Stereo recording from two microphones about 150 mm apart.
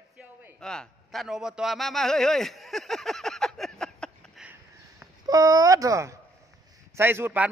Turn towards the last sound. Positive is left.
turn(degrees=-15)  # may be behind; listen again after turning